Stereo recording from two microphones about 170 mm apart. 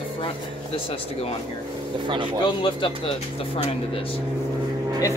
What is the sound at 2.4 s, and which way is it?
Speech, 30° left (ahead or behind).